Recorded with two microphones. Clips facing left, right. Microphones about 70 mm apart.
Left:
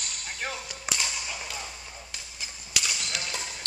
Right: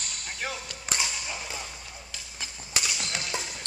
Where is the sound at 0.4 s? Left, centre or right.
Centre.